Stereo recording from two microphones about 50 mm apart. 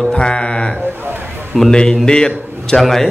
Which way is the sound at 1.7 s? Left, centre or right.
Centre.